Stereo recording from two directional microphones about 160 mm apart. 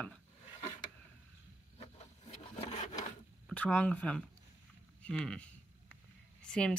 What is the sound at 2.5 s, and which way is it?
Wood, 45° left (ahead or behind).